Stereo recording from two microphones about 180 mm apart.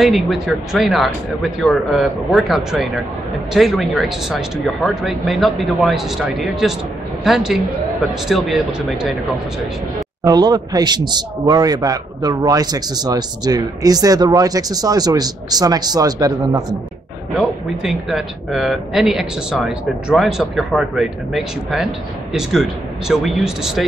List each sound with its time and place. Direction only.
0.0 s speech: centre (ahead or behind)
10.2 s a man's voice: 20° right (ahead or behind)
17.4 s speech: centre (ahead or behind)